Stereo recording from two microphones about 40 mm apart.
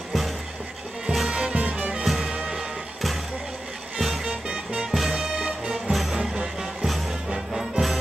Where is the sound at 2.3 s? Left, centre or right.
Centre.